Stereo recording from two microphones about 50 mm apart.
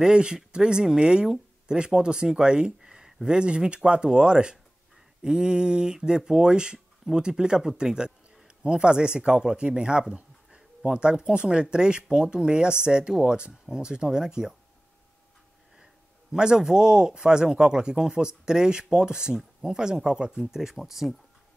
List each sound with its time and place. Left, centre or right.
0.0 s speech: centre
15.8 s speech: centre